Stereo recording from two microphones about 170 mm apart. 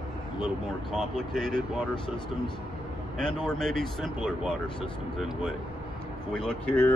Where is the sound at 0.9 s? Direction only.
Centre (ahead or behind).